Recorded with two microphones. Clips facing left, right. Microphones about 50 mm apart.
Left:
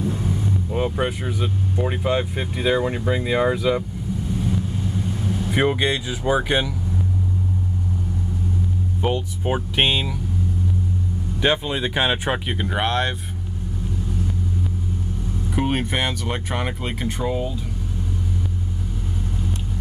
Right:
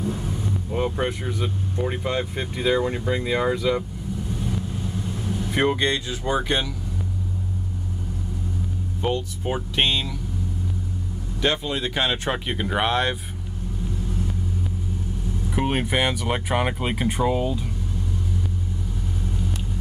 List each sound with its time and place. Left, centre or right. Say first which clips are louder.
0.7 s speech: even; centre
5.5 s speech: left 1 dB; centre
9.0 s speech: left 1 dB; centre
11.4 s speech: left 3 dB; centre
12.4 s speech: even; centre
15.5 s speech: even; centre